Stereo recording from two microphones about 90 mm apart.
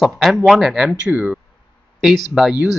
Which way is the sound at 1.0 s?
20° right (ahead or behind).